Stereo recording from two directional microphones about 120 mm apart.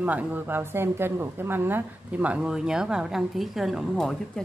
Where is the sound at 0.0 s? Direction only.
15° right (ahead or behind).